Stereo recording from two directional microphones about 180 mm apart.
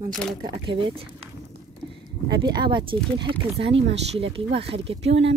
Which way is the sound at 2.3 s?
25° right (ahead or behind).